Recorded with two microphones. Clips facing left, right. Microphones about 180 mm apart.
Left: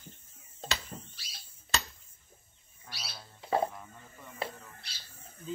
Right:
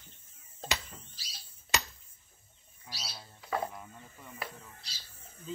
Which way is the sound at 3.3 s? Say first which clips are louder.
Left 5 dB; 30° left (ahead or behind).